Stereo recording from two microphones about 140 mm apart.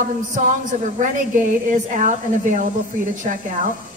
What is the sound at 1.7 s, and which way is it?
Speech, 65° right (ahead or behind).